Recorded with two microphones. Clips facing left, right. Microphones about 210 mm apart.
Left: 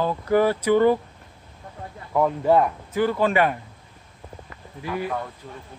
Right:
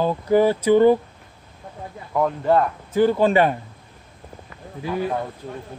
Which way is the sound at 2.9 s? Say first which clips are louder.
Right 6 dB; 25° right (ahead or behind).